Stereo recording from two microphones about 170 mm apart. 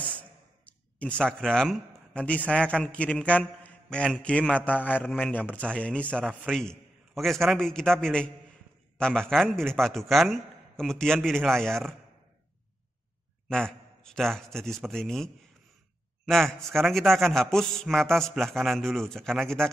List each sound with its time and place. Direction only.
0.7 s a man's voice: 10° left (ahead or behind)
13.5 s a man's voice: 5° left (ahead or behind)